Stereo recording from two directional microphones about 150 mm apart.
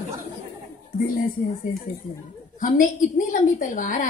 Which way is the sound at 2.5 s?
60° left (ahead or behind).